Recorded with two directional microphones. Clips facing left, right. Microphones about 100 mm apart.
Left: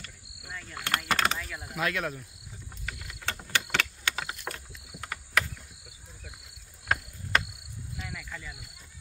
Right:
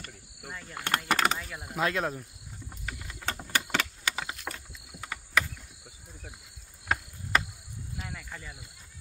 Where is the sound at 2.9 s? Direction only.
25° right (ahead or behind).